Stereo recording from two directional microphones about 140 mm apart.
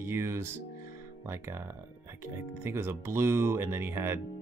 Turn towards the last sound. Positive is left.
turn(degrees=-15)  # may be behind; listen again after turning